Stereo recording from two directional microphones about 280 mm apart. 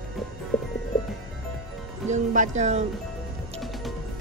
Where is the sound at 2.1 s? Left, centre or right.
Right.